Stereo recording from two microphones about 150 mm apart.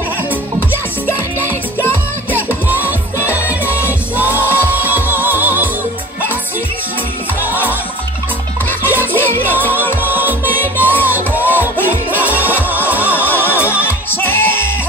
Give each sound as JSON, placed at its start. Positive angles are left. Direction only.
{"t": 2.3, "sound": "music", "side_deg": -10}
{"t": 7.4, "sound": "music", "side_deg": -10}
{"t": 8.9, "sound": "music", "side_deg": -10}
{"t": 13.5, "sound": "music", "side_deg": 15}